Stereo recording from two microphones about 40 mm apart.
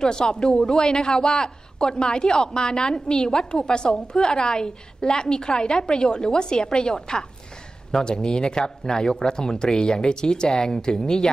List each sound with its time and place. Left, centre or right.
0.0 s speech: centre